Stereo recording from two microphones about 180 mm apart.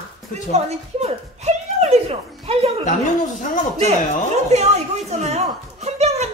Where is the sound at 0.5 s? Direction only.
35° right (ahead or behind).